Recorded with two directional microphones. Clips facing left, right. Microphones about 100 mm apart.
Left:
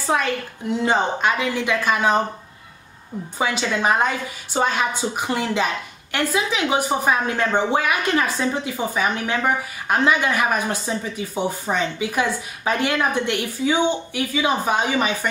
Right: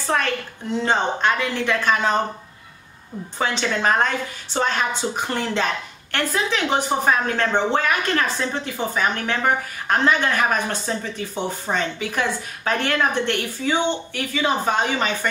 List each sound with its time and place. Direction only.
0.7 s speech: 10° left (ahead or behind)
3.3 s speech: 10° left (ahead or behind)